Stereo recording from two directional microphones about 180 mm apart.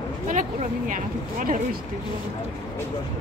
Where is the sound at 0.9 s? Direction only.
45° right (ahead or behind).